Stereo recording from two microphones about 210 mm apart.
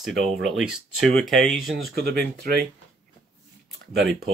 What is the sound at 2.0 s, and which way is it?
Speech, 50° right (ahead or behind).